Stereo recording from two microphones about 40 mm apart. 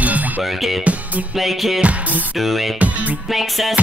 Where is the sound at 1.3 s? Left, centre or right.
Centre.